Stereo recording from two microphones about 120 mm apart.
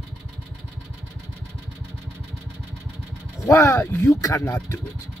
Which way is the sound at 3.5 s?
25° left (ahead or behind).